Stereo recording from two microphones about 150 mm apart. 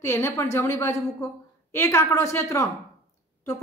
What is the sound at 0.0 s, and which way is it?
A woman's voice, 15° left (ahead or behind).